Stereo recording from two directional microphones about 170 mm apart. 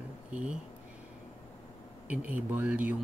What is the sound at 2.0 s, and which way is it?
Speech, 10° right (ahead or behind).